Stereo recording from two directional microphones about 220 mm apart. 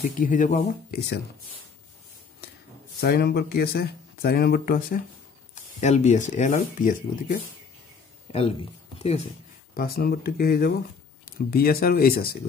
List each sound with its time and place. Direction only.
0.0 s speech: 35° left (ahead or behind)
3.0 s speech: 45° left (ahead or behind)
8.3 s speech: 25° left (ahead or behind)
9.8 s speech: 45° left (ahead or behind)